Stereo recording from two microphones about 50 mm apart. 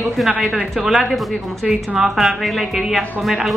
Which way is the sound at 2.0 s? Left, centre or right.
Centre.